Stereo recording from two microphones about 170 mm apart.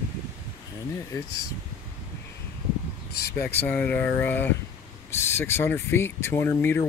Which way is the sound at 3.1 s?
70° left (ahead or behind).